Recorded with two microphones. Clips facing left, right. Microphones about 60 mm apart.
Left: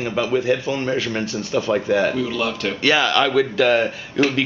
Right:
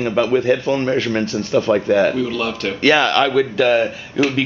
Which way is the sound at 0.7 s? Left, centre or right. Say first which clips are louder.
Right 4 dB; right.